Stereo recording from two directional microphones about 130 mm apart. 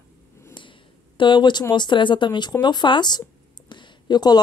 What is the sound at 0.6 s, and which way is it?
A woman's voice, 40° left (ahead or behind).